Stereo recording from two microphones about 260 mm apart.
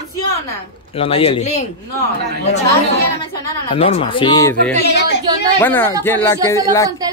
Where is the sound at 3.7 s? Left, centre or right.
Left.